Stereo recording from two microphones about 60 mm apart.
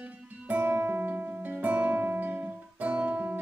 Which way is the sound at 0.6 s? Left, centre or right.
Right.